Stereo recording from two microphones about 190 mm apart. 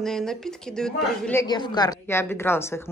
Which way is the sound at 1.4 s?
25° left (ahead or behind).